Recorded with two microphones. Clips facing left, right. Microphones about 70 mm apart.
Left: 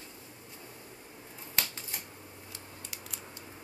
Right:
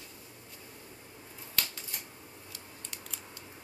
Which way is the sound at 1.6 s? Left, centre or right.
Left.